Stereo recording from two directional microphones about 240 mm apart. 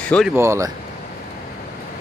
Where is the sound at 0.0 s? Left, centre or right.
Centre.